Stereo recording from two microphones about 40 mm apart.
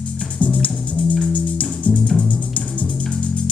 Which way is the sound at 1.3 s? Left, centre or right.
Left.